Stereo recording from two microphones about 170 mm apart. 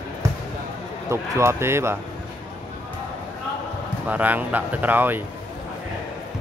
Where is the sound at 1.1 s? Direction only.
15° right (ahead or behind).